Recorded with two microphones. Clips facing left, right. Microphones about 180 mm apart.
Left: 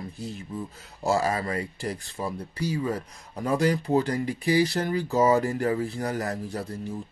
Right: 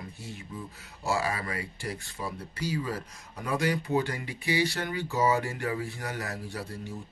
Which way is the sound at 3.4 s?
35° left (ahead or behind).